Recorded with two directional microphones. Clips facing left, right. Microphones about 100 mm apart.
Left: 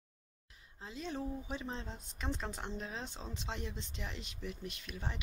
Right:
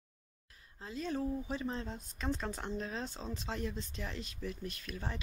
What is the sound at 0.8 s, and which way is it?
Speech, 20° left (ahead or behind).